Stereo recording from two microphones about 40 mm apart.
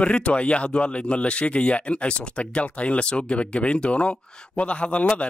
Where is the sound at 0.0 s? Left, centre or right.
Left.